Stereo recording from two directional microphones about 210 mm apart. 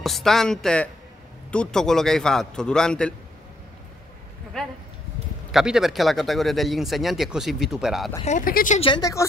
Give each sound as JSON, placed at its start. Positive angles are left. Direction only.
{"t": 0.0, "sound": "a man's voice", "side_deg": 0}
{"t": 5.5, "sound": "a man's voice", "side_deg": 0}
{"t": 8.3, "sound": "speech", "side_deg": 40}
{"t": 8.8, "sound": "speech", "side_deg": 20}